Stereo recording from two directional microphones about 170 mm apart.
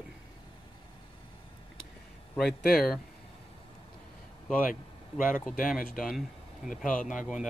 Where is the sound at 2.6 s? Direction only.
65° left (ahead or behind).